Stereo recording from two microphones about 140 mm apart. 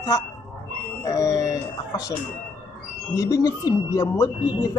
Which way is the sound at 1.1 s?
25° left (ahead or behind).